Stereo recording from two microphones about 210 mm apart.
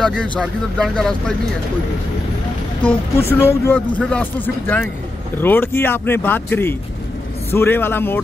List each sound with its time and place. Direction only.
0.0 s speech: 5° left (ahead or behind)
2.8 s speech: 25° left (ahead or behind)
3.3 s speech: 10° left (ahead or behind)